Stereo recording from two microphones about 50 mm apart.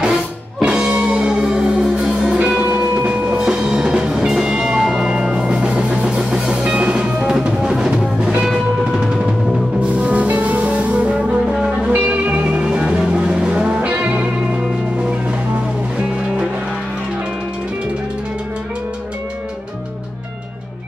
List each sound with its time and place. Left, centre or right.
0.0 s music: centre
2.3 s music: right
9.8 s music: right